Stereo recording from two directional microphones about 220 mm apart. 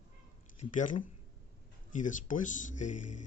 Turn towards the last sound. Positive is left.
turn(degrees=35)  # may be behind; listen again after turning